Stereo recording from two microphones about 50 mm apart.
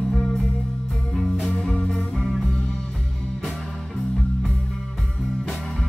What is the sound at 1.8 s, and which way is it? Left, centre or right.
Music, centre.